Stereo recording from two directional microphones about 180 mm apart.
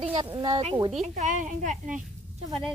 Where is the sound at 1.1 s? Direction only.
45° right (ahead or behind).